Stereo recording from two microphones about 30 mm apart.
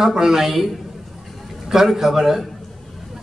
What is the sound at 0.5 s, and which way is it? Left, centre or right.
Speech, centre.